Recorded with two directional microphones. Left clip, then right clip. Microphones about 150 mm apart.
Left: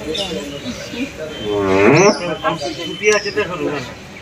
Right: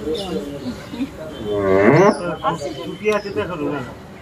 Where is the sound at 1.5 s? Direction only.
15° right (ahead or behind).